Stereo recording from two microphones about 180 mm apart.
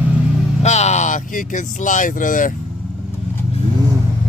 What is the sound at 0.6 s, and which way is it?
Vehicle, 40° left (ahead or behind).